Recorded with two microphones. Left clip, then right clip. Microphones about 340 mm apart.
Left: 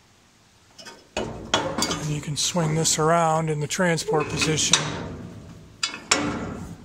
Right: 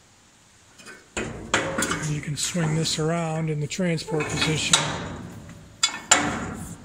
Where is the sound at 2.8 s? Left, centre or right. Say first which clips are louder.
Left 8 dB; centre.